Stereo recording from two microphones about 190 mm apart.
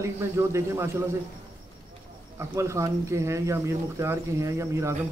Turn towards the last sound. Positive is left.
turn(degrees=-15)  # may be behind; listen again after turning